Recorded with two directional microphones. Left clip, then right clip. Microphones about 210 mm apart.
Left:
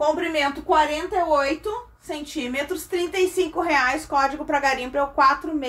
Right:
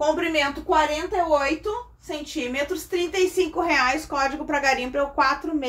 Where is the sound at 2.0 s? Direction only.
5° left (ahead or behind).